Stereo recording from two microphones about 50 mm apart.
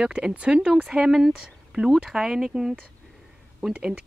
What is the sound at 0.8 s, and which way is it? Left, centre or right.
Speech, centre.